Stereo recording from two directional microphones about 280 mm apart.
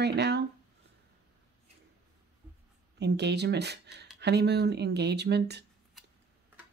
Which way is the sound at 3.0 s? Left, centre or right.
Right.